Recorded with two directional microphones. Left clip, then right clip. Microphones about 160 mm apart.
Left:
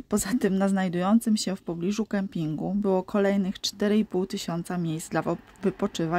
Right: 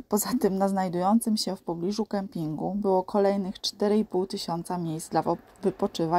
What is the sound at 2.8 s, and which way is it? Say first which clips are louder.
A woman's voice: right 1 dB; 40° left (ahead or behind).